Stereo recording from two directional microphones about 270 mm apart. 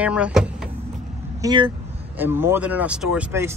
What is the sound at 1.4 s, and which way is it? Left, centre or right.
Speech, centre.